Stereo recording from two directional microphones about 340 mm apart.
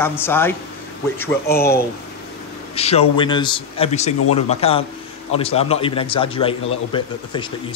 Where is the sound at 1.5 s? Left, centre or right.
Left.